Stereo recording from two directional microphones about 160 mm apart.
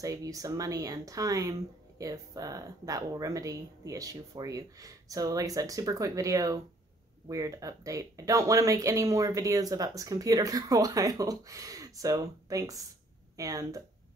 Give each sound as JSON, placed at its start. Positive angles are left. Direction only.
{"t": 0.0, "sound": "speech", "side_deg": -20}